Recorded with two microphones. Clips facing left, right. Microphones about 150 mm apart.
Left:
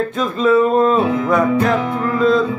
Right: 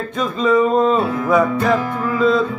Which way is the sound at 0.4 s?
5° left (ahead or behind).